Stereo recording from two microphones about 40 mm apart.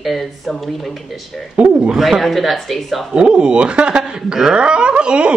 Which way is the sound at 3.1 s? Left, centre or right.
Right.